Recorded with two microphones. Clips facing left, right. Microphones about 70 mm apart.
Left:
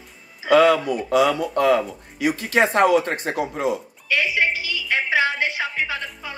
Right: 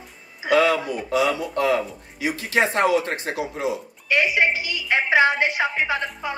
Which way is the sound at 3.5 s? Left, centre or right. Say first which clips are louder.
Left 2 dB; left.